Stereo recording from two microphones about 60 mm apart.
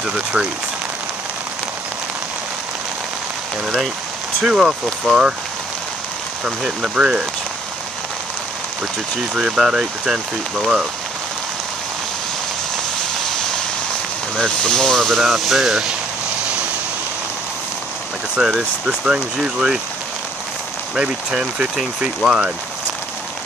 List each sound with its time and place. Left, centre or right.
0.0 s speech: centre
4.4 s speech: centre
6.4 s speech: centre
9.3 s speech: centre
14.4 s speech: centre
18.3 s speech: centre
20.9 s speech: centre